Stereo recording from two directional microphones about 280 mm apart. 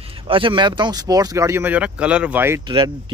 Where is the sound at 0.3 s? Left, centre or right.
Centre.